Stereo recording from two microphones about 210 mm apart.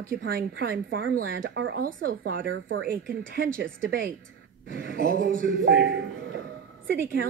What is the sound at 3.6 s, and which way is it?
A man's voice, 45° right (ahead or behind).